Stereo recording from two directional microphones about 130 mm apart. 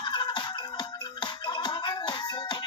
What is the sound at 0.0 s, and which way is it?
Music, 35° left (ahead or behind).